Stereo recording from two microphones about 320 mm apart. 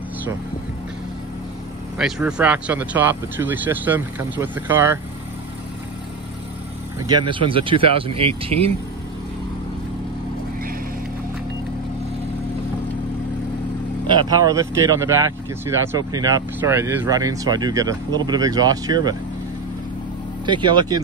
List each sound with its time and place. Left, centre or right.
2.0 s speech: centre
7.1 s speech: centre
14.0 s speech: centre
20.4 s speech: centre